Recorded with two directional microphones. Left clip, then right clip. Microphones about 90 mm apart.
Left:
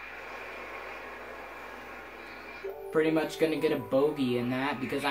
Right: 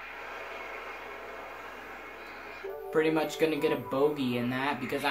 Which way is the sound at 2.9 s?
20° right (ahead or behind).